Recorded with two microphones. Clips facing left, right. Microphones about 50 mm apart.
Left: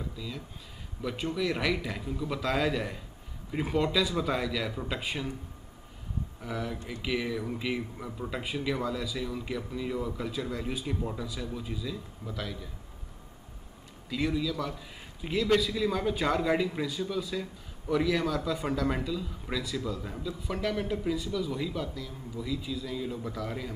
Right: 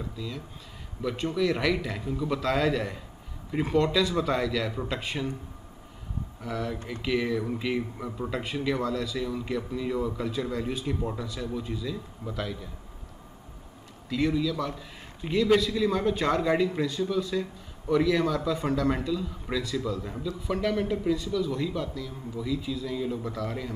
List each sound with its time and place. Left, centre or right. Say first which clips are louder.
0.2 s a man's voice: right 3 dB; centre
6.4 s a man's voice: right 4 dB; centre
14.0 s a man's voice: right 4 dB; centre